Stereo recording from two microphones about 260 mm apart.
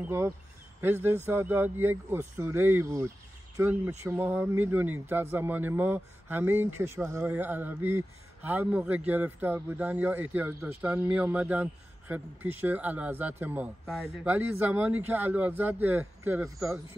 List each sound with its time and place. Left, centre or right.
0.0 s speech: centre